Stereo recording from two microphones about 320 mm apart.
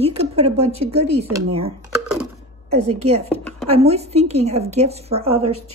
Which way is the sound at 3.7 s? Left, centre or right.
Centre.